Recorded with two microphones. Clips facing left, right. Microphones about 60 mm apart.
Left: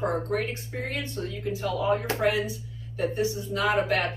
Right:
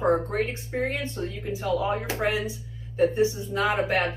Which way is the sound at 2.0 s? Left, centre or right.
Centre.